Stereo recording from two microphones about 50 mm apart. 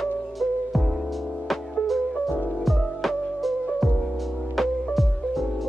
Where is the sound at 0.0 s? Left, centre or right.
Centre.